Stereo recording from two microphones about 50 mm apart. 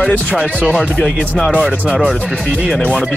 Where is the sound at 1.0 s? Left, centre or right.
Centre.